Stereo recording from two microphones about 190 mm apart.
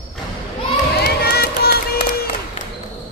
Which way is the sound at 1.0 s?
55° left (ahead or behind).